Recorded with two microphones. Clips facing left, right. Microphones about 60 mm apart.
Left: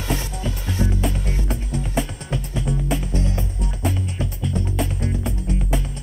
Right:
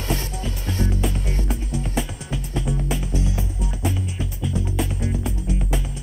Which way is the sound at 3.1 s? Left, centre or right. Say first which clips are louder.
Left 1 dB; left.